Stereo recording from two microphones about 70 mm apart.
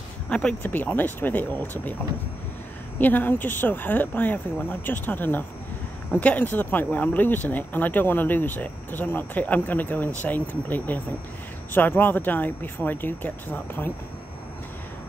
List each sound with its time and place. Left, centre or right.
0.3 s speech: centre
0.6 s speech: left
3.0 s speech: left